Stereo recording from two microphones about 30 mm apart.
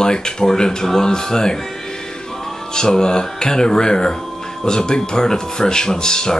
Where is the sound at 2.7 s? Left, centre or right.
Left.